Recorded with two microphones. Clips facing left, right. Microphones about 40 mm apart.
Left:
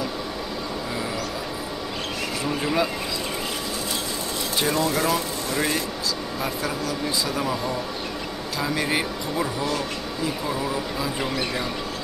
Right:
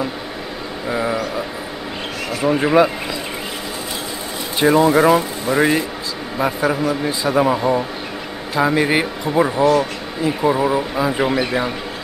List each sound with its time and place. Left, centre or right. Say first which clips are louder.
0.8 s speech: right 12 dB; right
2.4 s speech: right 11 dB; right
4.6 s speech: right 11 dB; right